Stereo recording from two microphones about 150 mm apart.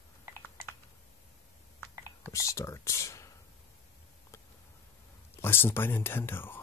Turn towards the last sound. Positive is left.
turn(degrees=15)  # may be behind; listen again after turning